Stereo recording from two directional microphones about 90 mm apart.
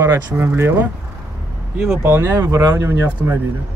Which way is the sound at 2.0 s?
25° right (ahead or behind).